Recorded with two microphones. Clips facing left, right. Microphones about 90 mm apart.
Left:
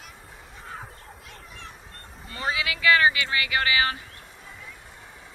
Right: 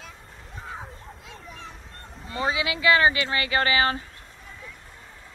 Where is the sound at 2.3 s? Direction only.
20° right (ahead or behind).